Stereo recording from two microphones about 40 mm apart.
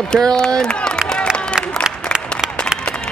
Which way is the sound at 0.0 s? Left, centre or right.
Centre.